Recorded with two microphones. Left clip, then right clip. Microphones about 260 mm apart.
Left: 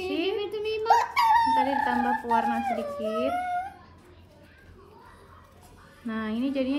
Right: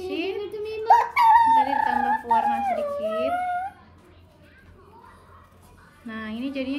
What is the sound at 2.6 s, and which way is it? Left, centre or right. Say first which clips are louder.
Wind instrument: right 4 dB; centre.